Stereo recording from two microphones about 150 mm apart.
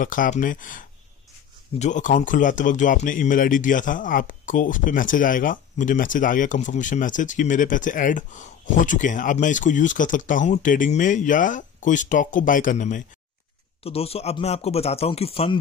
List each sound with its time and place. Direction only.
0.0 s speech: 65° left (ahead or behind)
13.8 s speech: 40° left (ahead or behind)